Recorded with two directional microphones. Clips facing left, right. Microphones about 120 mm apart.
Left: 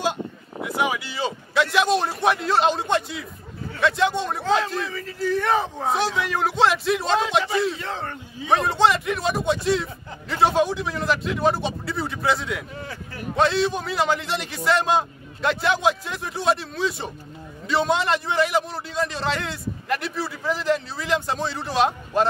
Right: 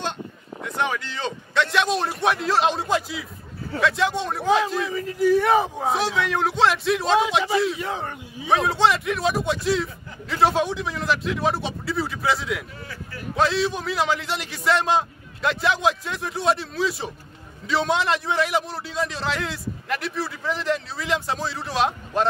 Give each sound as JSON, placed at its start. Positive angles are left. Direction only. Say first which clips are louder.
{"t": 0.6, "sound": "a man's voice", "louder": "left 2 dB", "side_deg": 5}
{"t": 4.8, "sound": "a man's voice", "louder": "right 6 dB", "side_deg": -15}
{"t": 7.7, "sound": "speech", "louder": "right 2 dB", "side_deg": -10}
{"t": 8.5, "sound": "a man's voice", "louder": "even", "side_deg": 0}